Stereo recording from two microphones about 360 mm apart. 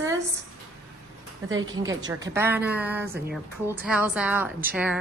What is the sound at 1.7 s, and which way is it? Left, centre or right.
A woman's voice, centre.